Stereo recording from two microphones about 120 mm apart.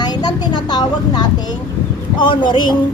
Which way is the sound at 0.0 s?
35° left (ahead or behind).